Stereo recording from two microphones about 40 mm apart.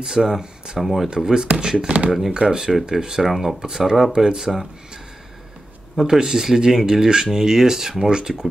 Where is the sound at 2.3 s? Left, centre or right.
Right.